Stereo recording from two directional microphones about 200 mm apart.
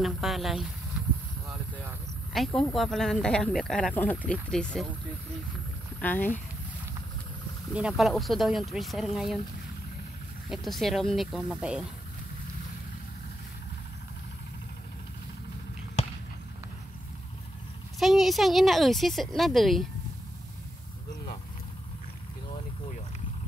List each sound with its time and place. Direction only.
0.0 s speech: centre (ahead or behind)
2.3 s speech: centre (ahead or behind)
5.9 s speech: 10° left (ahead or behind)
7.7 s speech: 5° right (ahead or behind)
10.5 s speech: centre (ahead or behind)
16.0 s a sound: 35° left (ahead or behind)
17.9 s speech: centre (ahead or behind)